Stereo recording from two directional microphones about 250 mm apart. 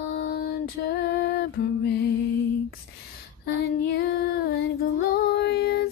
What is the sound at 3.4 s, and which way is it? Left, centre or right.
Female singing, left.